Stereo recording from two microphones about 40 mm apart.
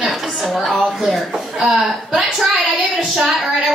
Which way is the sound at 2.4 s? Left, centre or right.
Centre.